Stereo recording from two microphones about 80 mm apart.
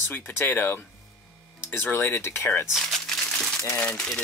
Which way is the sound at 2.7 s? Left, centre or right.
Centre.